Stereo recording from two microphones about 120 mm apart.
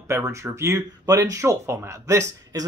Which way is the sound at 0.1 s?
25° right (ahead or behind).